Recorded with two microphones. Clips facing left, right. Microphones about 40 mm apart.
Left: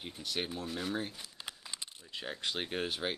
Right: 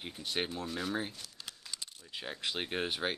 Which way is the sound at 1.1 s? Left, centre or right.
Centre.